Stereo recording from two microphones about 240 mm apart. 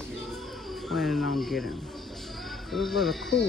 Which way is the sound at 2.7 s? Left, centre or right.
Centre.